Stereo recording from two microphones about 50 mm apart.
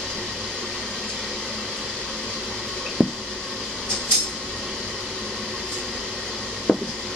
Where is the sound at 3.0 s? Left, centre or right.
Centre.